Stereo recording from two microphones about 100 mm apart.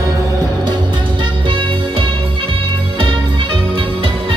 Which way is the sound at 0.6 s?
50° right (ahead or behind).